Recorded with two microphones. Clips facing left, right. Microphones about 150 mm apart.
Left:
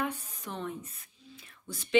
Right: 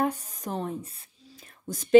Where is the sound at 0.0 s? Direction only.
40° right (ahead or behind).